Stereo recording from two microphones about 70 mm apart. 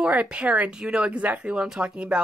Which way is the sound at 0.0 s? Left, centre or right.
Centre.